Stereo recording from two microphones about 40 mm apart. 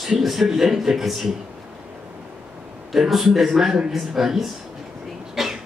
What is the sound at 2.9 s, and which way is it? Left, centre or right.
A man's voice, centre.